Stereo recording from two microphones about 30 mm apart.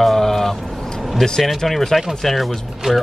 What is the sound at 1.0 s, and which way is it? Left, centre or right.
Vehicle, centre.